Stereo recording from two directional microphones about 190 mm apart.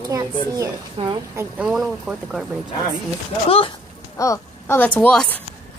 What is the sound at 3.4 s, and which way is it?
Speech, 30° left (ahead or behind).